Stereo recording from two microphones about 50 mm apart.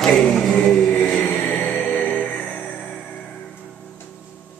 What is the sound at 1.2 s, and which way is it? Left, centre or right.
Music, left.